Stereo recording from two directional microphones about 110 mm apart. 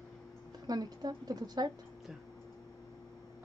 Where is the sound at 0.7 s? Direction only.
35° right (ahead or behind).